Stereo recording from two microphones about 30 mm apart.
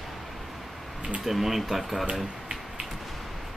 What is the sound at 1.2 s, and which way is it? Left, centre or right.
Speech, centre.